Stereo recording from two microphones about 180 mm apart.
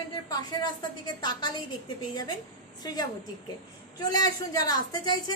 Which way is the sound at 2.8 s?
20° left (ahead or behind).